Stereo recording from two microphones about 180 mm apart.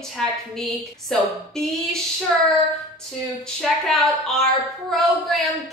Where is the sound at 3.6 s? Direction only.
Centre (ahead or behind).